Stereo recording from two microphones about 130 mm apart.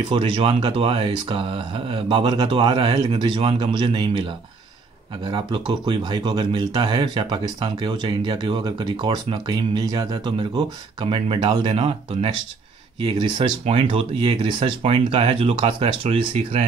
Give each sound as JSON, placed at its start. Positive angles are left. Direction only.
{"t": 0.1, "sound": "speech", "side_deg": -45}